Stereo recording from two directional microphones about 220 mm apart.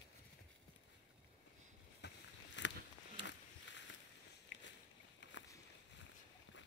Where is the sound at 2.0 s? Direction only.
50° left (ahead or behind).